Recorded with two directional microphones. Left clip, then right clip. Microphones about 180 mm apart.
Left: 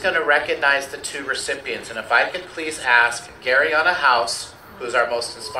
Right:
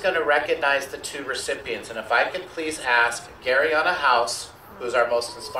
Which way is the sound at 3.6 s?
50° right (ahead or behind).